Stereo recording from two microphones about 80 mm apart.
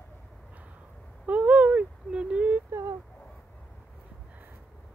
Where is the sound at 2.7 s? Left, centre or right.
Right.